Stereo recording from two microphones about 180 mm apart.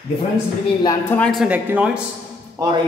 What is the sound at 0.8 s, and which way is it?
Speech, 10° left (ahead or behind).